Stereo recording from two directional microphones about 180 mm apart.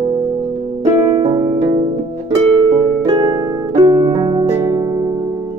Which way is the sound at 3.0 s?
25° right (ahead or behind).